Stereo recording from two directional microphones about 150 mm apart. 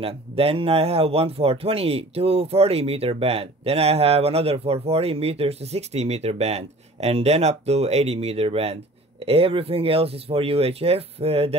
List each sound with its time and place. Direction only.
0.0 s speech: 40° right (ahead or behind)